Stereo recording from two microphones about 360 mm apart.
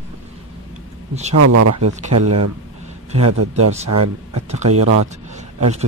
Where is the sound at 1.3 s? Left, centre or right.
Right.